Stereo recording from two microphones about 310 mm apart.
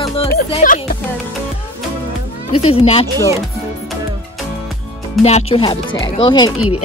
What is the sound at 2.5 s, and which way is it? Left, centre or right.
Speech, centre.